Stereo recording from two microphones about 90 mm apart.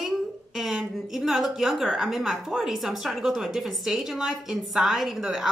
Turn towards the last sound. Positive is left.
turn(degrees=-5)  # may be behind; listen again after turning